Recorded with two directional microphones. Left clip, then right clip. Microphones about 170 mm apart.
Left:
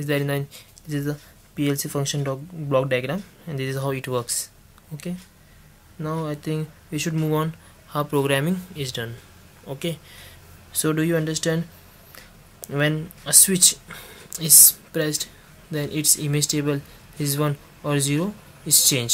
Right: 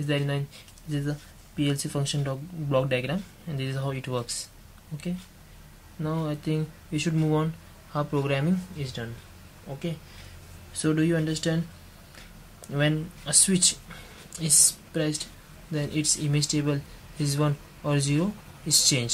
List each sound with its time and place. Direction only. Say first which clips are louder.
0.0 s speech: left 5 dB; 15° left (ahead or behind)
6.0 s speech: left 3 dB; 15° left (ahead or behind)
10.7 s speech: left 3 dB; 25° left (ahead or behind)
12.6 s speech: left 4 dB; 15° left (ahead or behind)